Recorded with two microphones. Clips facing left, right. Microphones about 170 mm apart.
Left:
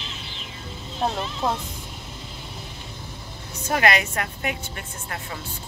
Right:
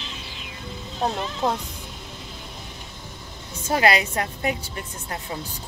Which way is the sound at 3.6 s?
30° right (ahead or behind).